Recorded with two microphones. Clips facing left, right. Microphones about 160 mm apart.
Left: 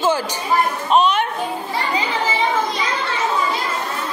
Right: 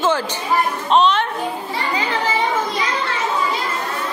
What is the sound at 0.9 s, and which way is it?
Speech, 10° left (ahead or behind).